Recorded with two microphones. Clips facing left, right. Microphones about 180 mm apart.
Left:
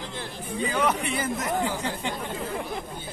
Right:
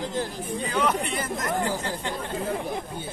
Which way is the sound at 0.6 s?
10° left (ahead or behind).